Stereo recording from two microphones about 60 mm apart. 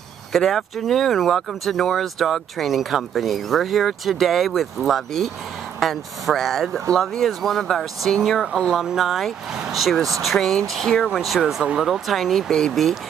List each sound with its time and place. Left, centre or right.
0.3 s speech: centre
8.8 s speech: centre
11.6 s speech: centre
11.9 s speech: centre
12.4 s speech: centre